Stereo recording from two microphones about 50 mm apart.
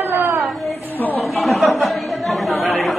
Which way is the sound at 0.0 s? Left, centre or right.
Right.